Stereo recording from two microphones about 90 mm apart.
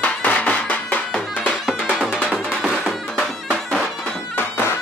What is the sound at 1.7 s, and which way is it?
Music, 5° right (ahead or behind).